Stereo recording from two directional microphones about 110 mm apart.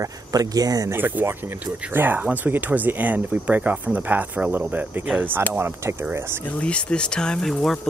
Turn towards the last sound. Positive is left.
turn(degrees=5)  # may be behind; listen again after turning